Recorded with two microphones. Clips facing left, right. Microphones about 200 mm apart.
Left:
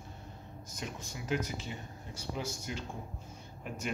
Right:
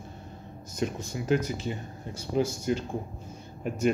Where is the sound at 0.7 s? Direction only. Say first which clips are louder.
Right 12 dB; 50° right (ahead or behind).